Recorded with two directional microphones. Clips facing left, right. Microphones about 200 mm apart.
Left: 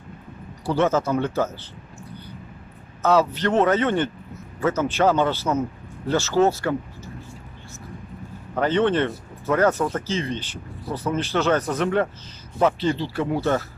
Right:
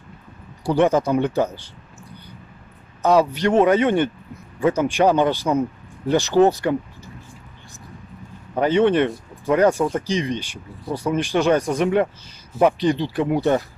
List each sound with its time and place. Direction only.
0.7 s speech: 15° right (ahead or behind)
3.0 s speech: 15° right (ahead or behind)
8.5 s speech: 10° right (ahead or behind)